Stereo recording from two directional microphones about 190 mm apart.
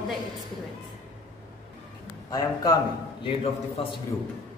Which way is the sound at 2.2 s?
20° left (ahead or behind).